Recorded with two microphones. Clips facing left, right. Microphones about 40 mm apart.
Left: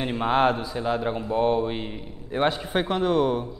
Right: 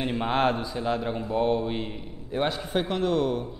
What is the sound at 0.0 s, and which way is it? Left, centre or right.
Speech, centre.